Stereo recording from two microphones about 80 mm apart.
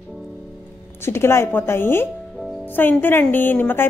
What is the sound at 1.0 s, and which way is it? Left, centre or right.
A woman's voice, left.